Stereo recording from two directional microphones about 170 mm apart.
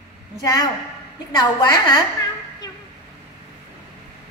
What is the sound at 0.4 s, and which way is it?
Speech, 20° left (ahead or behind).